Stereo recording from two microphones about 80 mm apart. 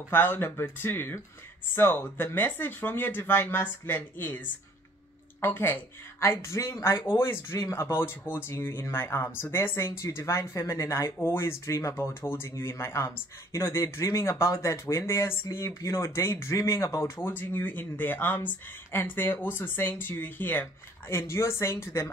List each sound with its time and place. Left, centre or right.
0.1 s speech: left
5.4 s speech: left
17.3 s speech: left